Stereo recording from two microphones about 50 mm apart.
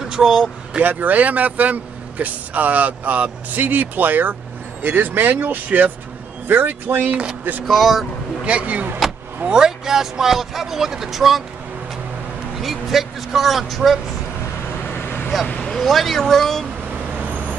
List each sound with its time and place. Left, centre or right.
0.0 s speech: centre
0.8 s a man's voice: right
7.1 s speech: right
7.6 s speech: centre
8.5 s speech: right
9.5 s speech: centre
12.6 s speech: centre
14.9 s vehicle: left
15.8 s speech: centre
17.1 s vehicle: right